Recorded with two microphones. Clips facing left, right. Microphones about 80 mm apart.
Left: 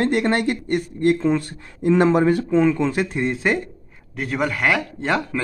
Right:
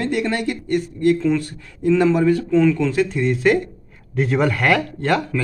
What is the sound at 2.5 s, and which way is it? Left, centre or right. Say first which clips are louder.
Speech: right 3 dB; left.